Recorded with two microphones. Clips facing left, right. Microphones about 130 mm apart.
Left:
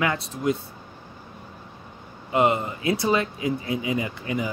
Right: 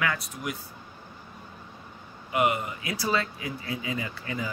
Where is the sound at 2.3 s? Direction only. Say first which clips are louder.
Left 4 dB; 30° left (ahead or behind).